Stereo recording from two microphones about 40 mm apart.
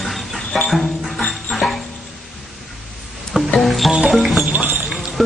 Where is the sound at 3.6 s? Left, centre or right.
Centre.